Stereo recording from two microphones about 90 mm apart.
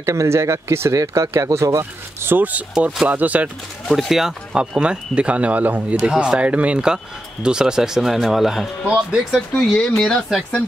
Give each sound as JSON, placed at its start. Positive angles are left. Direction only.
{"t": 0.0, "sound": "speech", "side_deg": -35}
{"t": 2.7, "sound": "speech", "side_deg": -5}
{"t": 3.1, "sound": "speech", "side_deg": -15}
{"t": 4.1, "sound": "speech", "side_deg": -5}
{"t": 9.6, "sound": "speech", "side_deg": 5}